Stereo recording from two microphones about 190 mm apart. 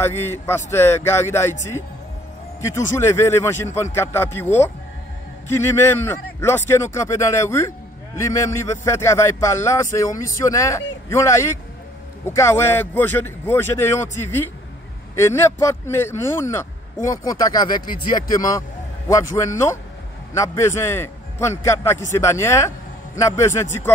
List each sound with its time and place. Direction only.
0.0 s a man's voice: 10° left (ahead or behind)
5.5 s a man's voice: 10° left (ahead or behind)